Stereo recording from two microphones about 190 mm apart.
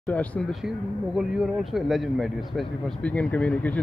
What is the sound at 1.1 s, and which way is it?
Speech, centre (ahead or behind).